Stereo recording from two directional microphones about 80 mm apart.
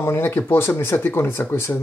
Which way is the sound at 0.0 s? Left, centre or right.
Left.